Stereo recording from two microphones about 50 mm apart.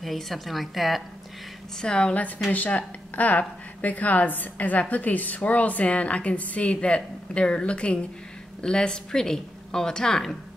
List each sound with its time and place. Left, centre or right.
0.0 s a woman's voice: centre
1.8 s a woman's voice: centre
2.5 s a woman's voice: left; by 10.3 s centre